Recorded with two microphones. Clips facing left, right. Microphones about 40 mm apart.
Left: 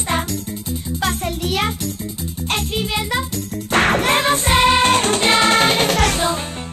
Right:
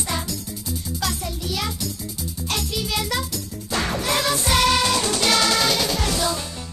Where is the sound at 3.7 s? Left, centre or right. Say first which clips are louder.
Left 9 dB; left.